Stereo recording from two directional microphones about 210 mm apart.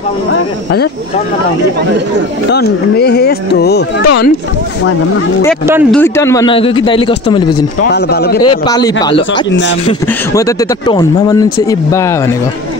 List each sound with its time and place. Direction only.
2.5 s speech: 50° left (ahead or behind)
5.9 s speech: 10° left (ahead or behind)
7.8 s speech: 50° left (ahead or behind)
8.6 s speech: 20° left (ahead or behind)
10.3 s speech: 15° left (ahead or behind)